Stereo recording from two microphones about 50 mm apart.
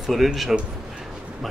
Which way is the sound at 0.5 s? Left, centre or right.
Centre.